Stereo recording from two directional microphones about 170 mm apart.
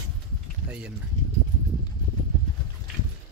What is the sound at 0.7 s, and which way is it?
Speech, 5° right (ahead or behind).